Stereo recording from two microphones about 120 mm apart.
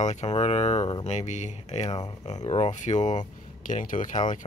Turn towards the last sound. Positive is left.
turn(degrees=90)